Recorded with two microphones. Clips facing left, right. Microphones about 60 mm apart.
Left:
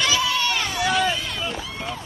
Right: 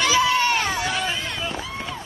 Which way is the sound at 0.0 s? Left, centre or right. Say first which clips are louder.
Right 3 dB; right.